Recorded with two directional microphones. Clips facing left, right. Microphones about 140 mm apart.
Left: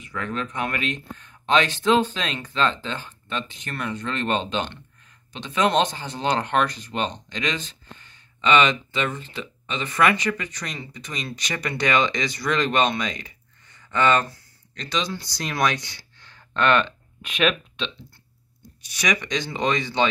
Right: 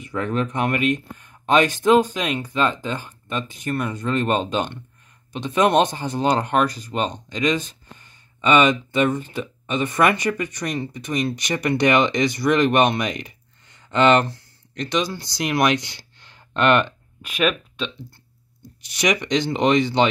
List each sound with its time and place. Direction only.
0.2 s speech: 20° right (ahead or behind)
1.1 s a sound: 10° right (ahead or behind)
1.8 s speech: 10° right (ahead or behind)
5.7 s speech: 15° right (ahead or behind)
18.9 s speech: 15° right (ahead or behind)